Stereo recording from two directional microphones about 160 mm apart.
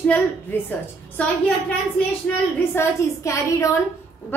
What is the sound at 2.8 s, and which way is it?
Speech, 20° left (ahead or behind).